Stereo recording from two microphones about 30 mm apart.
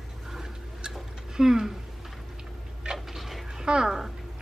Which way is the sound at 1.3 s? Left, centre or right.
Centre.